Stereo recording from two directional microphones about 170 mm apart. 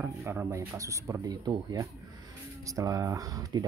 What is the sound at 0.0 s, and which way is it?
Speech, 10° right (ahead or behind).